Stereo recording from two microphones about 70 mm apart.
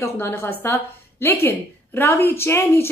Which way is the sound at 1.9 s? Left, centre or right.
Left.